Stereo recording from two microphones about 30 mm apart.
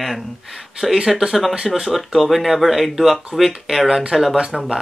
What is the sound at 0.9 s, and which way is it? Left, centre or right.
Speech, right.